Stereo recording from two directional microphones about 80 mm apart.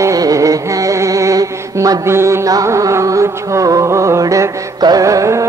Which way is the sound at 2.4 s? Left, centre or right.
Right.